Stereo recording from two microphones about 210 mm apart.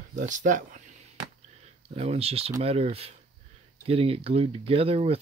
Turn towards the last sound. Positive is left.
turn(degrees=-30)  # may be behind; listen again after turning